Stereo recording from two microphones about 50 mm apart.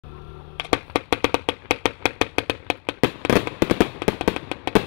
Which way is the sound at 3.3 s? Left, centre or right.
Centre.